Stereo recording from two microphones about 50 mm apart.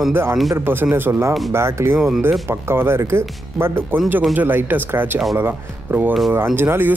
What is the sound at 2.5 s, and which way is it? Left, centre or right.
Speech, right.